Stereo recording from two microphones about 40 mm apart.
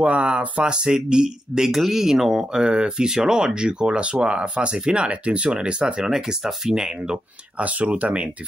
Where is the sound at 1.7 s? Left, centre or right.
Centre; by 5.9 s right.